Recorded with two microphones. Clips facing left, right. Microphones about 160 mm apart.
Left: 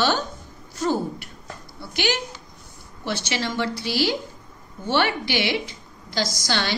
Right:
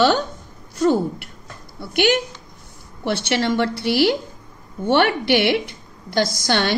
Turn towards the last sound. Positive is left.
turn(degrees=-55)  # may be behind; listen again after turning